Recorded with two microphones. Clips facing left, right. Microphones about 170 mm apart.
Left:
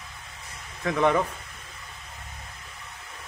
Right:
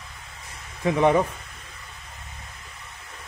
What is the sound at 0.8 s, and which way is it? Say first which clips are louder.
Speech: right 3 dB; 20° right (ahead or behind).